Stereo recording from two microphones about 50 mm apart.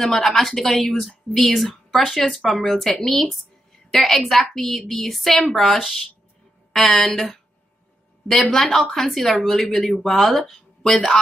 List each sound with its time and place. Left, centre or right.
0.0 s a woman's voice: centre